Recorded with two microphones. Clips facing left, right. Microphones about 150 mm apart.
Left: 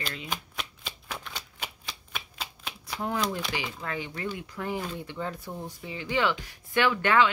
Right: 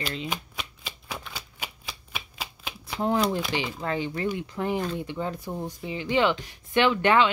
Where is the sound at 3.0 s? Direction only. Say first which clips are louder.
Right 6 dB; 30° right (ahead or behind).